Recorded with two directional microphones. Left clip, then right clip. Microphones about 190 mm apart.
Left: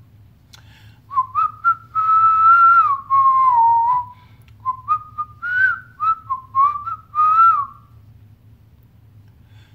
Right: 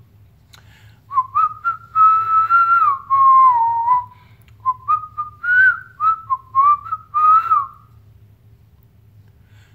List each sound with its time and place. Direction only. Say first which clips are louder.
0.6 s whistling: even; 5° left (ahead or behind)